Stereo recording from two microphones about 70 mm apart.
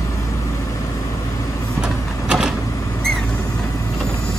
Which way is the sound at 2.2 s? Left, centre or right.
Centre.